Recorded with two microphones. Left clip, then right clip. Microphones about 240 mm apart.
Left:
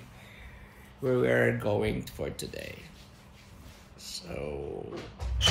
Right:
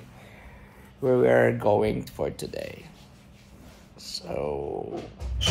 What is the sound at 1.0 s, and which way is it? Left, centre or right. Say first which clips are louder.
Speech: right 6 dB; centre.